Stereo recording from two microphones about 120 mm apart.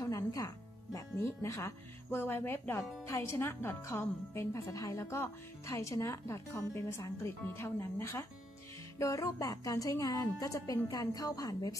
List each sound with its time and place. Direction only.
0.0 s music: 25° left (ahead or behind)
0.9 s speech: 20° left (ahead or behind)